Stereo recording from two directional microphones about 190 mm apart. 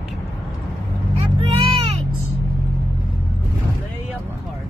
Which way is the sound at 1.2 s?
30° right (ahead or behind).